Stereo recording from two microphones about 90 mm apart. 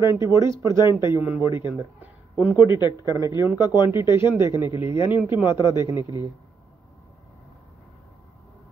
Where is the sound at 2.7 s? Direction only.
50° left (ahead or behind).